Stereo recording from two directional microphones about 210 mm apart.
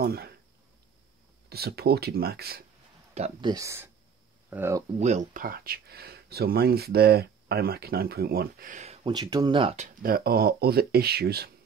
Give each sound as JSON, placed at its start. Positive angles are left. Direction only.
{"t": 0.0, "sound": "speech", "side_deg": -45}
{"t": 1.5, "sound": "speech", "side_deg": -50}
{"t": 3.2, "sound": "speech", "side_deg": -20}
{"t": 4.9, "sound": "speech", "side_deg": -35}
{"t": 9.1, "sound": "speech", "side_deg": -20}
{"t": 9.8, "sound": "speech", "side_deg": -45}